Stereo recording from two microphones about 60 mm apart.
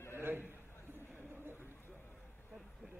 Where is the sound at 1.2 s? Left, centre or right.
Right.